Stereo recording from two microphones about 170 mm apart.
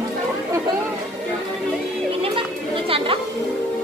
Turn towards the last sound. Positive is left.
turn(degrees=-35)  # may be behind; listen again after turning